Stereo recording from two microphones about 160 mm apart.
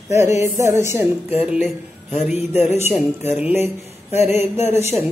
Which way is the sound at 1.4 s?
5° right (ahead or behind).